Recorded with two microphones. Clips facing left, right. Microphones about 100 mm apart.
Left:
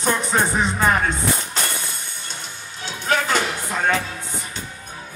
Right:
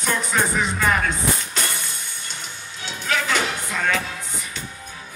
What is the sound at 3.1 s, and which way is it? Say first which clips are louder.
Music: left 3 dB; 40° left (ahead or behind).